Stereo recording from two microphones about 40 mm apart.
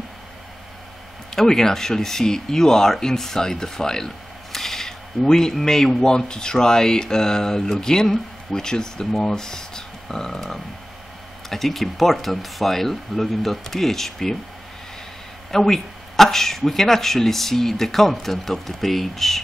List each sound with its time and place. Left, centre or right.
1.3 s speech: centre
15.5 s speech: centre